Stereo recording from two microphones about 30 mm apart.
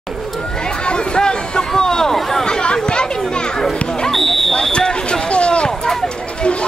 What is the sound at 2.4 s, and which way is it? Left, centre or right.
Children playing, left.